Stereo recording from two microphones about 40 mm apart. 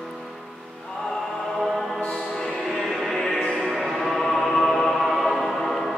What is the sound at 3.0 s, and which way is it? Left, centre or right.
Music, centre.